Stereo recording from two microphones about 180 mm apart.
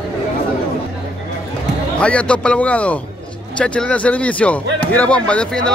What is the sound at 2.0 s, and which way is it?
Speech, 5° left (ahead or behind).